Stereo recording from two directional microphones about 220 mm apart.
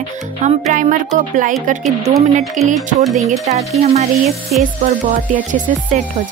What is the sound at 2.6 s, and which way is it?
Speech, 35° right (ahead or behind).